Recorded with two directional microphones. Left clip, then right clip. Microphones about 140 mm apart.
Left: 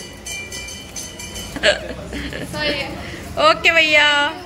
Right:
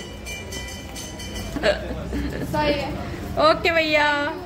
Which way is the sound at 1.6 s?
5° right (ahead or behind).